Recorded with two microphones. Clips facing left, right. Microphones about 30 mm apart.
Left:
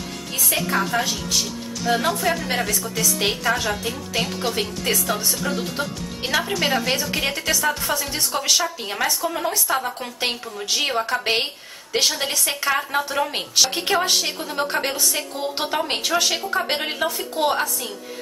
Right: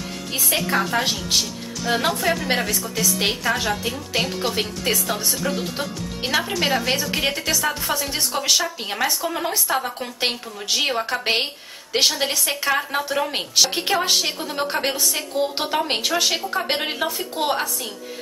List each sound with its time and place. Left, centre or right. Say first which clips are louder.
0.3 s speech: right 1 dB; centre
0.6 s a woman's voice: even; centre
9.7 s a woman's voice: even; centre